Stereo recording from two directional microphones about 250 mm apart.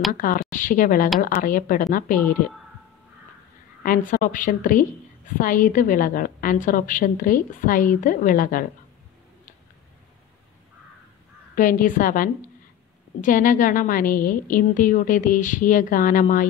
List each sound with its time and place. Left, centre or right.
0.1 s a woman's voice: left
3.8 s a woman's voice: left
11.5 s a woman's voice: left